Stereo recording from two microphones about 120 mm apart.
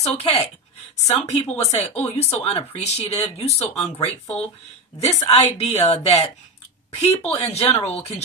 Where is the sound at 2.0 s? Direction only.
60° left (ahead or behind).